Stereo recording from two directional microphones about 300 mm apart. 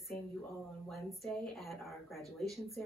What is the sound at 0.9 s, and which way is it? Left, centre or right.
Speech, centre.